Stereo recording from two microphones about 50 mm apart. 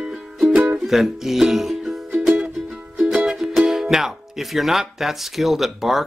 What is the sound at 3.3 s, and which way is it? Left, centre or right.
Speech, centre.